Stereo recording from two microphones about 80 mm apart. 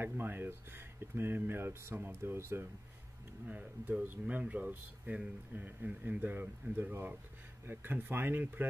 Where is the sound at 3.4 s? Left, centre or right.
Centre.